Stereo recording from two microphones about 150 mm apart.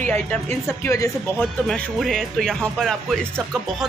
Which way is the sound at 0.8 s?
20° left (ahead or behind).